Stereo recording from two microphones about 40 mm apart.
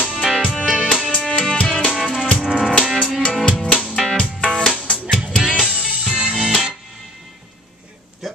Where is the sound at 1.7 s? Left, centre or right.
Centre.